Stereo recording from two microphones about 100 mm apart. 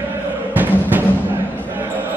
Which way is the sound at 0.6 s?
20° right (ahead or behind).